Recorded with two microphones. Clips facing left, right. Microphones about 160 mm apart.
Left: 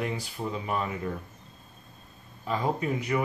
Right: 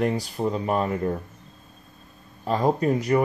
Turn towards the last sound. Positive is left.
turn(degrees=-40)  # may be behind; listen again after turning